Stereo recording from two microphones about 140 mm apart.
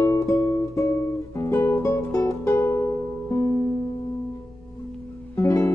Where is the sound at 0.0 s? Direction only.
20° left (ahead or behind).